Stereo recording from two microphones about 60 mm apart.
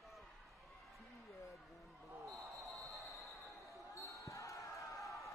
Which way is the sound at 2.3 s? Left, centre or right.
Right.